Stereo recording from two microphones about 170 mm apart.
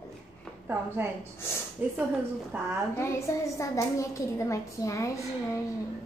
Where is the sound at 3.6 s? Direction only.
20° left (ahead or behind).